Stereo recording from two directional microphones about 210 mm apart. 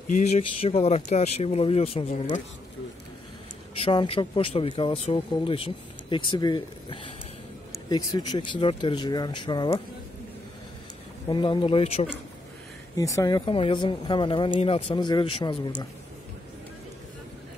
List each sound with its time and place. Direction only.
0.1 s speech: 30° left (ahead or behind)
3.7 s speech: 25° left (ahead or behind)
8.3 s speech: 20° left (ahead or behind)
11.2 s speech: 20° left (ahead or behind)
12.9 s speech: 15° left (ahead or behind)